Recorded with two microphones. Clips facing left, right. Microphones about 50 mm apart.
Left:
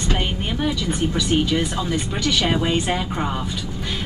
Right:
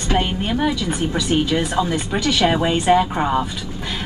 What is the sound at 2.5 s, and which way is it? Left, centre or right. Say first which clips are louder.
Speech: right 5 dB; centre.